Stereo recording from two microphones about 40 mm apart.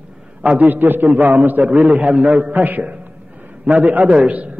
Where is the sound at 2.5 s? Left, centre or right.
Right.